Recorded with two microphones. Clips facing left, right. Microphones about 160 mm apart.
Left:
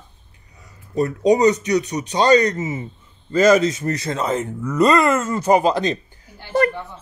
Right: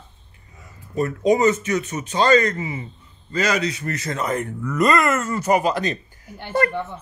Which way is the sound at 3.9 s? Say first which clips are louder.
Left 3 dB; 30° left (ahead or behind).